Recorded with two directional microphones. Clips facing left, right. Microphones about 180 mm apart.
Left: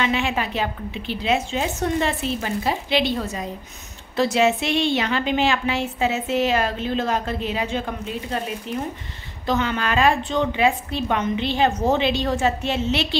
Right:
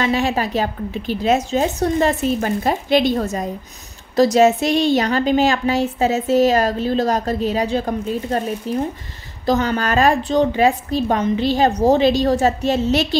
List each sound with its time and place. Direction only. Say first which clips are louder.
0.0 s a woman's voice: right 4 dB; 40° right (ahead or behind)